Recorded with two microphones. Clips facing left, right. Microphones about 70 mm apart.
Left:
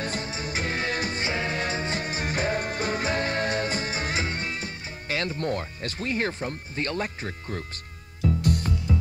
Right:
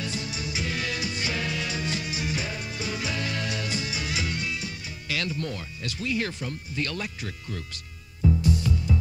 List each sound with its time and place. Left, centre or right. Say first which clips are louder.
0.0 s music: left 2 dB; left